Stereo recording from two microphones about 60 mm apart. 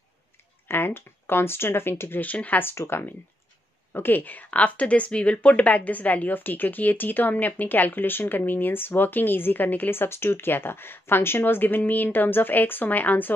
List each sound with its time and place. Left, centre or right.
0.7 s speech: left
2.2 s speech: left
2.6 s speech: left